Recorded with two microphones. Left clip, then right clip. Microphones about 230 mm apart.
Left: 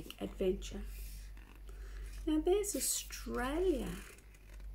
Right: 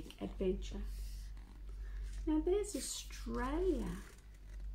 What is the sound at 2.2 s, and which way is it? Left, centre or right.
Speech, centre.